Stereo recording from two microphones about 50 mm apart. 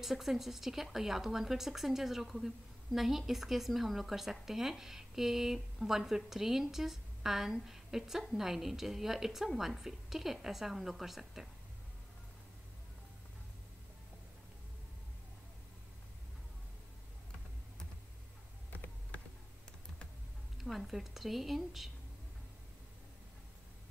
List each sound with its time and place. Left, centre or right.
0.0 s speech: centre
18.7 s a sound: left
20.6 s speech: centre